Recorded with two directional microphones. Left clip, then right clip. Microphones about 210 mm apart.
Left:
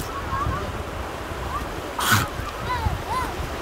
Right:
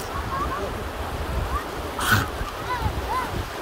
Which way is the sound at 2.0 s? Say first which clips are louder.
Left 1 dB; 45° left (ahead or behind).